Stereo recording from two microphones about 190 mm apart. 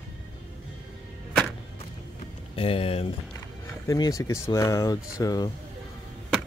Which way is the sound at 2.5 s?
30° left (ahead or behind).